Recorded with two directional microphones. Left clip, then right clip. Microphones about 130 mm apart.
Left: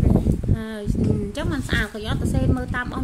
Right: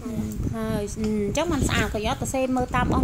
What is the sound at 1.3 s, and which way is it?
A woman's voice, 15° right (ahead or behind).